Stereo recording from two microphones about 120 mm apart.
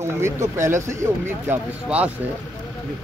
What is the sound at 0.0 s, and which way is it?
Speech, 25° right (ahead or behind).